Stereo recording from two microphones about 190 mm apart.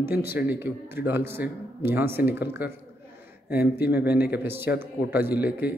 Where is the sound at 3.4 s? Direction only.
55° left (ahead or behind).